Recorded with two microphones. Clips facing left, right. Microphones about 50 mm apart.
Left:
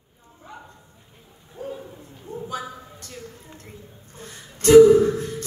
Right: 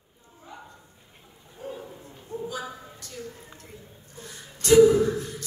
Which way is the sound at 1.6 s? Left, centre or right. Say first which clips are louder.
Left 4 dB; left.